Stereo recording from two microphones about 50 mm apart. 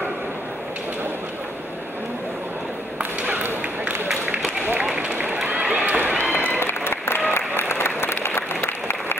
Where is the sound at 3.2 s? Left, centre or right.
Right.